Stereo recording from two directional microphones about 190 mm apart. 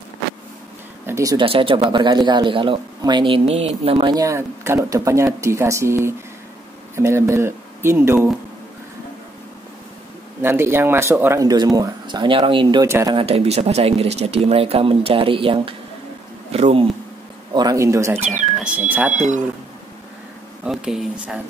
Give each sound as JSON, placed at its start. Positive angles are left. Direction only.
{"t": 1.0, "sound": "speech", "side_deg": -15}
{"t": 10.4, "sound": "speech", "side_deg": -10}
{"t": 12.8, "sound": "speech", "side_deg": -15}
{"t": 13.1, "sound": "speech", "side_deg": -30}
{"t": 17.6, "sound": "speech", "side_deg": -15}
{"t": 18.1, "sound": "speech", "side_deg": -35}
{"t": 18.6, "sound": "speech", "side_deg": -5}
{"t": 19.1, "sound": "speech", "side_deg": -40}
{"t": 20.6, "sound": "speech", "side_deg": -5}